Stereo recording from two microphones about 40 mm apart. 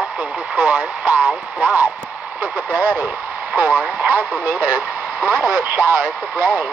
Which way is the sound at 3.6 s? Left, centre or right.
Right.